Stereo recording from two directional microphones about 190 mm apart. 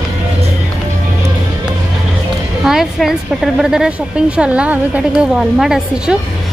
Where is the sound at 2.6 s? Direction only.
Centre (ahead or behind).